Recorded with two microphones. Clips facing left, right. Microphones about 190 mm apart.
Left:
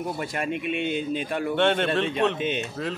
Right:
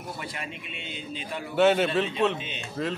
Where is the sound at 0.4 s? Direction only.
55° left (ahead or behind).